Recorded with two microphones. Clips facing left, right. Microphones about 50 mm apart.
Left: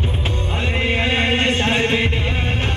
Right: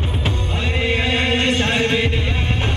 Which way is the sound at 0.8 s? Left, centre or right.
Left.